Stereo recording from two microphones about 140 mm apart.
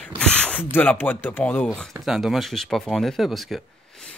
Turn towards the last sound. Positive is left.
turn(degrees=0)  # may be behind; listen again after turning